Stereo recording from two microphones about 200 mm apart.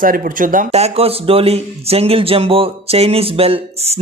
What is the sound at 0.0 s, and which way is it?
Speech, 45° right (ahead or behind).